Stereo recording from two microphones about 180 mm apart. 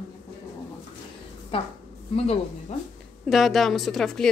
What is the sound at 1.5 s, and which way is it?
Speech, 30° left (ahead or behind).